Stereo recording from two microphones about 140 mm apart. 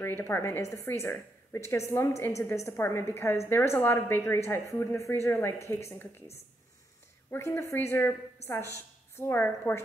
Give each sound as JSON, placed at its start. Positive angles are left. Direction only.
{"t": 0.0, "sound": "a woman's voice", "side_deg": 15}
{"t": 7.2, "sound": "a woman's voice", "side_deg": 20}